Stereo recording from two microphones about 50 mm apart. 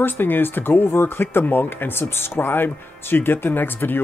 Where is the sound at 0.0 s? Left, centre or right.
Left.